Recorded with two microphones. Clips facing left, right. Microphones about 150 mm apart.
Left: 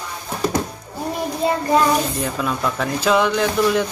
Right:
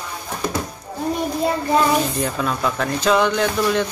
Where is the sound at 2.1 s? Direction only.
Centre (ahead or behind).